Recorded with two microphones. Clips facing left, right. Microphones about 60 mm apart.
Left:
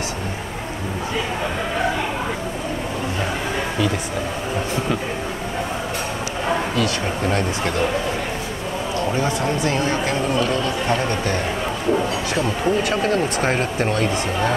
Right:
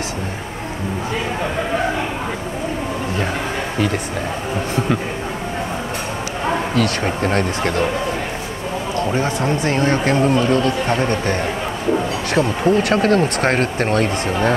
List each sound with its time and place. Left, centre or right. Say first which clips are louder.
6.7 s speech: right 3 dB; right
9.1 s speech: right 2 dB; right